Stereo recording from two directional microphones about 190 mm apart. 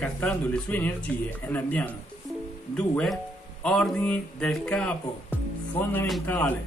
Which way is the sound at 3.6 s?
5° left (ahead or behind).